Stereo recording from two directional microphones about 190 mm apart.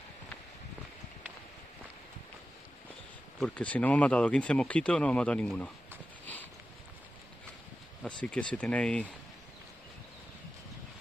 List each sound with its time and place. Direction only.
3.3 s speech: 5° left (ahead or behind)
6.2 s a sound: 10° left (ahead or behind)
8.0 s speech: 5° left (ahead or behind)